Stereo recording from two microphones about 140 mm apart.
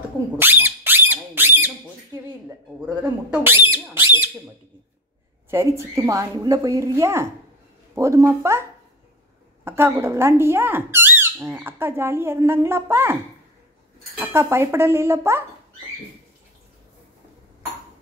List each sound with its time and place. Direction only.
0.4 s a sound: 15° right (ahead or behind)
3.0 s speech: 15° right (ahead or behind)
5.5 s speech: 20° right (ahead or behind)
9.7 s speech: 15° right (ahead or behind)
14.2 s speech: 20° right (ahead or behind)